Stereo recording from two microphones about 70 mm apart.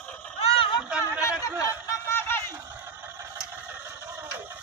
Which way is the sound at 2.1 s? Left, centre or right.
Left.